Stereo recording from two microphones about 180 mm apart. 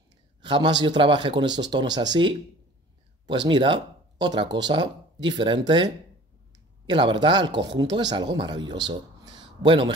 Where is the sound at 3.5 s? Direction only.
25° right (ahead or behind).